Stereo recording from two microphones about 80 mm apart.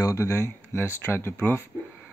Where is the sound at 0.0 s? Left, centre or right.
Left.